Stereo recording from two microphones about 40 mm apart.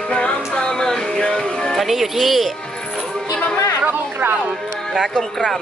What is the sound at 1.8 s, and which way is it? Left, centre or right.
Speech, centre.